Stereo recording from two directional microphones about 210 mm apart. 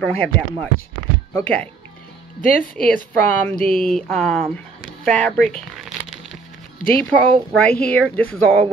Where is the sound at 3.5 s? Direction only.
40° left (ahead or behind).